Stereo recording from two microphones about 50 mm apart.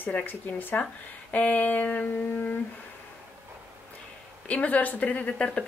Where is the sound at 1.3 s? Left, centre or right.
Left.